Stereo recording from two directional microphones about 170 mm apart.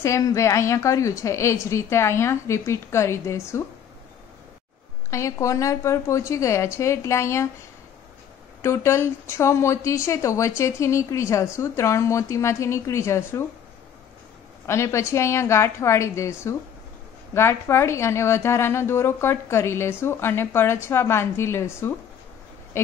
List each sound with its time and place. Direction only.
0.0 s a woman's voice: 20° left (ahead or behind)
5.1 s a woman's voice: 20° left (ahead or behind)
8.6 s a woman's voice: 15° left (ahead or behind)
14.7 s a woman's voice: 15° left (ahead or behind)